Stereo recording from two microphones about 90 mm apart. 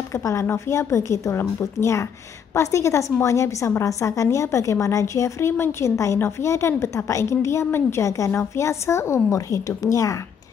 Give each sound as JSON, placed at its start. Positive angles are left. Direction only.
{"t": 0.1, "sound": "a woman's voice", "side_deg": 35}